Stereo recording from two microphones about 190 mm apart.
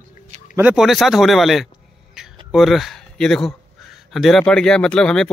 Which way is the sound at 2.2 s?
Centre (ahead or behind).